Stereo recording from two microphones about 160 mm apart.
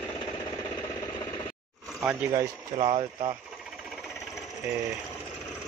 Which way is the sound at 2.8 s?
35° right (ahead or behind).